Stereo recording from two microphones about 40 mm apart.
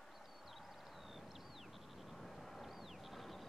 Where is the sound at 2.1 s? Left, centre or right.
Centre.